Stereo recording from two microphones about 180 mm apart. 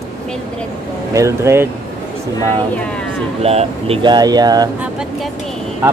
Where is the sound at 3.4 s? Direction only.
35° right (ahead or behind).